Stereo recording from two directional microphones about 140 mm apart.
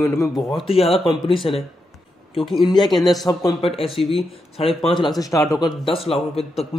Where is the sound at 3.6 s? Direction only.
45° left (ahead or behind).